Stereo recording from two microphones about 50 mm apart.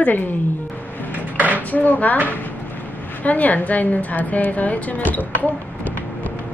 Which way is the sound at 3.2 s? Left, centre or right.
Left.